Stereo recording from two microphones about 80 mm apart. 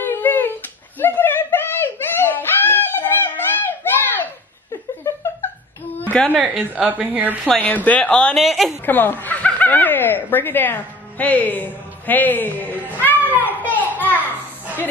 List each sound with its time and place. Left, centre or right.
0.0 s a sound: left
6.3 s a woman's voice: centre
7.6 s speech: centre
8.4 s a woman's voice: centre
8.8 s speech: left
13.3 s children playing: left
13.9 s a sound: left